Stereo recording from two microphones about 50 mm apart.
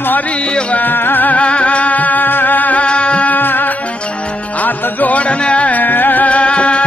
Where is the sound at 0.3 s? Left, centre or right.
Left.